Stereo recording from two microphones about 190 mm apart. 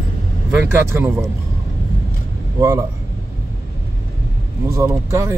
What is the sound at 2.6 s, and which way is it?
Speech, 20° right (ahead or behind).